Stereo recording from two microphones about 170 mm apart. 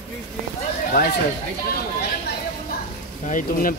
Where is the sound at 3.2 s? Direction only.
50° left (ahead or behind).